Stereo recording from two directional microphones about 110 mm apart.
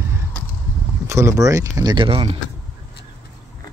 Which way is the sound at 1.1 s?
25° right (ahead or behind).